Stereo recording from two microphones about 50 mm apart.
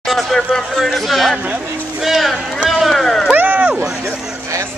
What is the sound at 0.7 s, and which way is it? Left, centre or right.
Speech, centre.